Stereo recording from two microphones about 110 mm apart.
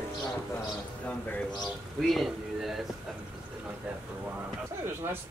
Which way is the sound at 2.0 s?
Centre (ahead or behind).